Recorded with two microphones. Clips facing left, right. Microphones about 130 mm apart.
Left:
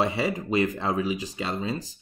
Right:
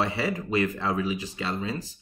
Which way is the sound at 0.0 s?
20° left (ahead or behind).